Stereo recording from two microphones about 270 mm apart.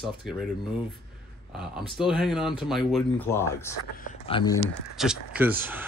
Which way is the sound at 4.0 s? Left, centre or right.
Left.